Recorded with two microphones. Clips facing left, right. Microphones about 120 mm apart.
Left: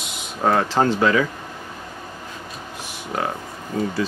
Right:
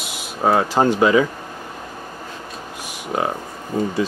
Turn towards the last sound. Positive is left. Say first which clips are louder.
# right 2 dB
turn(degrees=-20)  # may be behind; listen again after turning